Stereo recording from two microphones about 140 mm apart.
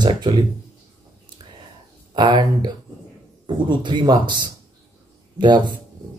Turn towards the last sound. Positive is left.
turn(degrees=-35)  # may be behind; listen again after turning